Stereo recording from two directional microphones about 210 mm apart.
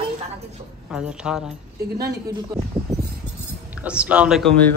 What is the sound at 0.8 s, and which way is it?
Speech, 5° right (ahead or behind).